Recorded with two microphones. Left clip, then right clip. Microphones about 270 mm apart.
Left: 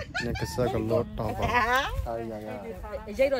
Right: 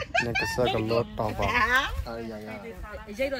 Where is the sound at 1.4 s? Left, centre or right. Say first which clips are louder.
Right 1 dB; left.